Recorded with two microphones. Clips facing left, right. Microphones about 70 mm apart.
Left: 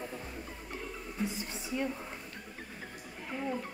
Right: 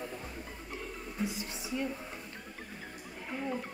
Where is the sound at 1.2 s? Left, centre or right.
Left.